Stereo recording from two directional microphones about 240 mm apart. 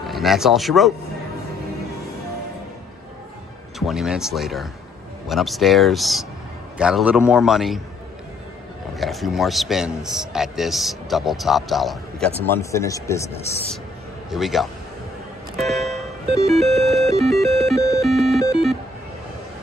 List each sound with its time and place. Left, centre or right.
0.0 s speech: centre
3.8 s a man's voice: centre
8.9 s a man's voice: centre
12.4 s speech: centre
14.3 s a man's voice: centre
15.5 s music: centre
15.9 s music: right
16.7 s music: centre
17.5 s music: right
17.7 s music: centre
18.0 s music: centre